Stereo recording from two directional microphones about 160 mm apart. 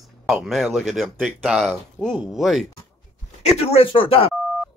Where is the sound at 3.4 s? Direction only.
40° left (ahead or behind).